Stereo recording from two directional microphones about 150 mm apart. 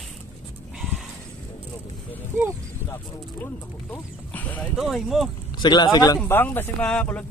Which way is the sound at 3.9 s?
10° left (ahead or behind).